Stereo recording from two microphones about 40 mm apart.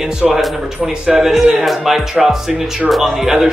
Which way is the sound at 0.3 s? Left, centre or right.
Centre.